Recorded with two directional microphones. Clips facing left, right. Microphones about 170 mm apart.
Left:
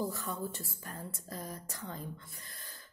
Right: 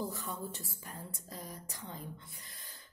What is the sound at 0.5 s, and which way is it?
A woman's voice, 15° right (ahead or behind).